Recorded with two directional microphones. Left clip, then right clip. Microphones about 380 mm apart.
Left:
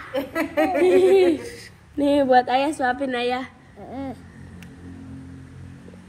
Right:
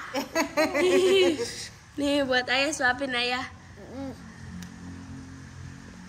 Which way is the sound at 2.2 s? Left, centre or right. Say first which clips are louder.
Left 7 dB; centre.